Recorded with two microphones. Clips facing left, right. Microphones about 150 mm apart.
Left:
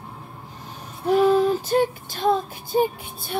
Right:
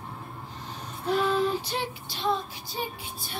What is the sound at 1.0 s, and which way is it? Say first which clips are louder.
Child singing: left 8 dB; 45° left (ahead or behind).